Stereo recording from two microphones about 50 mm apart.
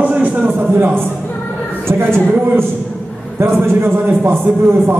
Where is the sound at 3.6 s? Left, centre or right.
Right.